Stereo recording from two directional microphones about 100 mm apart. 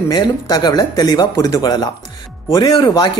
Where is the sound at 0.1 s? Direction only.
45° left (ahead or behind).